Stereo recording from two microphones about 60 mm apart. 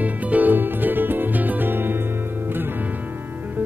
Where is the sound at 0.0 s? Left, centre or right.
Right.